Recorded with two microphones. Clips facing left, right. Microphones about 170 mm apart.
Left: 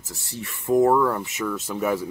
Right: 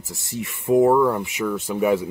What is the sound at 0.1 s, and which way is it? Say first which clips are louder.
Speech: right 5 dB; 15° right (ahead or behind).